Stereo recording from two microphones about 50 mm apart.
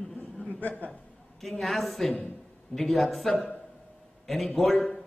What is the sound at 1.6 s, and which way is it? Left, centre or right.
Speech, centre.